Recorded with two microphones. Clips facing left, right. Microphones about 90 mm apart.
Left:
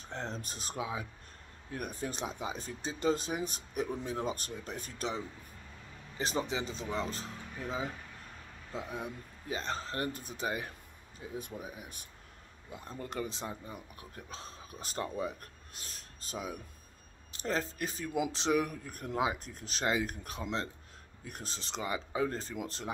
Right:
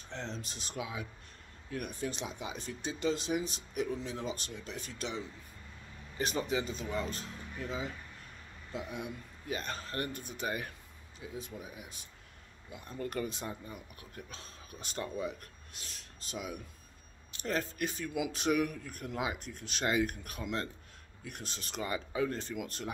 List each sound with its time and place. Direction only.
0.1 s speech: 45° left (ahead or behind)
11.1 s speech: 55° left (ahead or behind)
11.5 s speech: 35° left (ahead or behind)
13.0 s speech: 20° left (ahead or behind)